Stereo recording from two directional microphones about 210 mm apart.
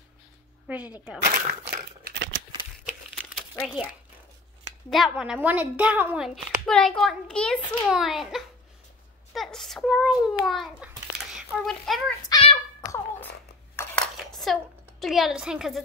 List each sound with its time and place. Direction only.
0.7 s speech: 5° right (ahead or behind)
1.2 s speech: 45° right (ahead or behind)
1.7 s crumpling: 45° right (ahead or behind)
3.5 s a woman's voice: centre (ahead or behind)
12.3 s a sound: 25° left (ahead or behind)
12.8 s giggle: 15° left (ahead or behind)
13.7 s a sound: 5° left (ahead or behind)